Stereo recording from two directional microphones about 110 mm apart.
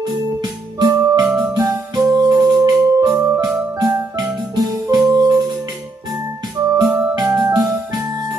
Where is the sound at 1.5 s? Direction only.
40° right (ahead or behind).